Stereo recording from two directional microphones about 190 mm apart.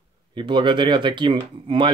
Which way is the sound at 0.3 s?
25° right (ahead or behind).